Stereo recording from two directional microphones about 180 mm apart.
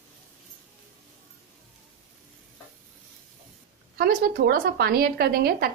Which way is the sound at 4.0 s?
60° right (ahead or behind).